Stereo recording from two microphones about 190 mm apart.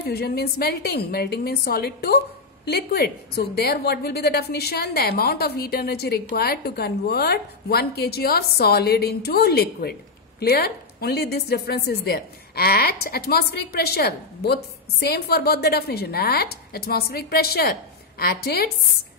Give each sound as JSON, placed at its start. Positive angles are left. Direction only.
{"t": 0.0, "sound": "a woman's voice", "side_deg": 55}